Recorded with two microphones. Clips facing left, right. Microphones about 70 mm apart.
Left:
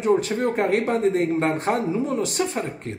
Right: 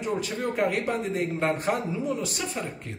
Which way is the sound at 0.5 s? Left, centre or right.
Left.